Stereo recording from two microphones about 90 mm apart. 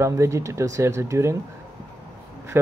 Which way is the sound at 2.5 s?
25° right (ahead or behind).